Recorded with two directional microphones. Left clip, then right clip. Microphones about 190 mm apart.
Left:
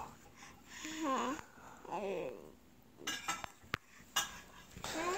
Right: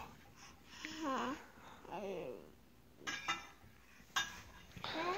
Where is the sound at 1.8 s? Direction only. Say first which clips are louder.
Left 5 dB; 20° left (ahead or behind).